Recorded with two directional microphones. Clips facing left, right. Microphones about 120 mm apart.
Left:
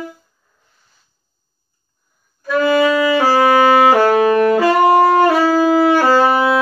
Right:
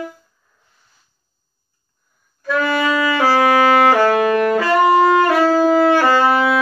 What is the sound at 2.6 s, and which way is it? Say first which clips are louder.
Saxophone: left 5 dB; 30° left (ahead or behind).